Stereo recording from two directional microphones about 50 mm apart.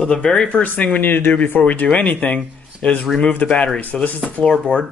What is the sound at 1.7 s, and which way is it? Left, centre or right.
Speech, left.